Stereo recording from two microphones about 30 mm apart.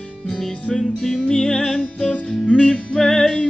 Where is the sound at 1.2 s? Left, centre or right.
Left.